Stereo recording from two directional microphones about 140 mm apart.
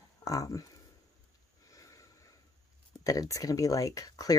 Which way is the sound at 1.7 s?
25° left (ahead or behind).